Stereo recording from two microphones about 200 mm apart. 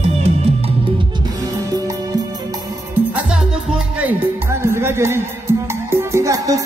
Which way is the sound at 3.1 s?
5° right (ahead or behind).